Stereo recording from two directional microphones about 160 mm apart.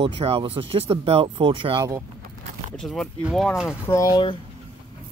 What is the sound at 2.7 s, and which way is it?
Speech, centre (ahead or behind).